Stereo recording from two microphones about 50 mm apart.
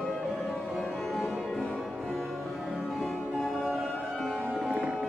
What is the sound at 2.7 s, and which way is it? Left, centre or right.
Music, centre.